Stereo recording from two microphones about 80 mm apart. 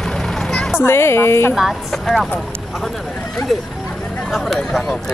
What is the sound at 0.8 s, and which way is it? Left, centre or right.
Speech, left.